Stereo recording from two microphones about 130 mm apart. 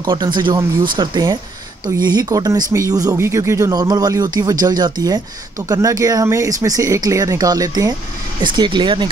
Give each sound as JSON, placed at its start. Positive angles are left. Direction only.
{"t": 0.0, "sound": "speech", "side_deg": -35}